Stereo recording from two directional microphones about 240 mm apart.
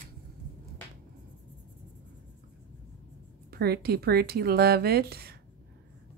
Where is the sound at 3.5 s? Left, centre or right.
Right.